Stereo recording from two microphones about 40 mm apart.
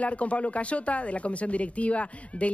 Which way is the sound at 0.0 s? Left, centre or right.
Left.